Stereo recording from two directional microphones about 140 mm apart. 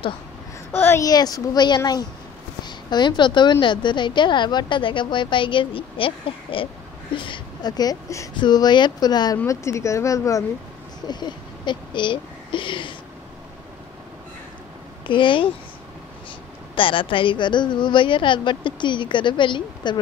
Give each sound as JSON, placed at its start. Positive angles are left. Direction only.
{"t": 0.7, "sound": "a child's voice", "side_deg": 15}
{"t": 15.0, "sound": "a woman's voice", "side_deg": 35}
{"t": 16.7, "sound": "a woman's voice", "side_deg": 35}